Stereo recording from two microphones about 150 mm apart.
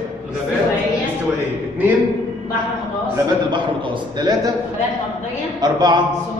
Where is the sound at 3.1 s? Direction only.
30° right (ahead or behind).